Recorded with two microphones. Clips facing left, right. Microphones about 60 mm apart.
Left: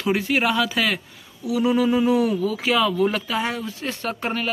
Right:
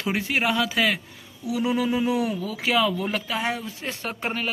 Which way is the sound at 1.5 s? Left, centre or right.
Centre.